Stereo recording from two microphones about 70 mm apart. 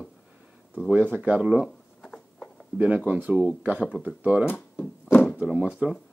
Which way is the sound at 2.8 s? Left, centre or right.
Right.